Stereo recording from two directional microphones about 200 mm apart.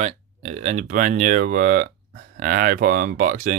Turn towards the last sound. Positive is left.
turn(degrees=-40)  # may be behind; listen again after turning